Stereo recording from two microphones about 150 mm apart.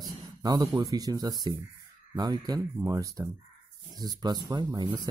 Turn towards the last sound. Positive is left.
turn(degrees=-25)  # may be behind; listen again after turning